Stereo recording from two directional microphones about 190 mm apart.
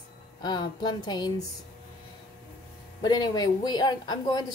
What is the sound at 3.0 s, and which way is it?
Speech, 20° left (ahead or behind).